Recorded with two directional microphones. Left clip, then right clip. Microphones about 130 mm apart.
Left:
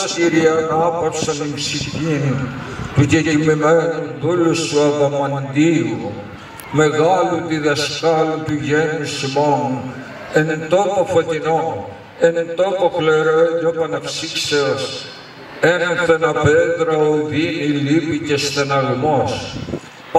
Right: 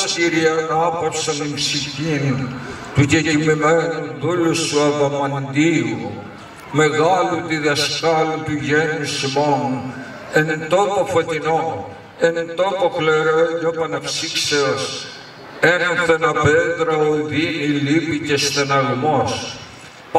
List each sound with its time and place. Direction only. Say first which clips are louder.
0.0 s a man's voice: left 2 dB; 35° right (ahead or behind)
4.6 s a man's voice: left 1 dB; 35° right (ahead or behind)
10.3 s a man's voice: left 1 dB; 45° right (ahead or behind)